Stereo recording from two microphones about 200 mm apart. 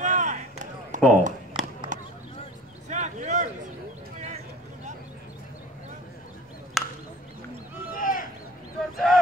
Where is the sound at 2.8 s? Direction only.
35° right (ahead or behind).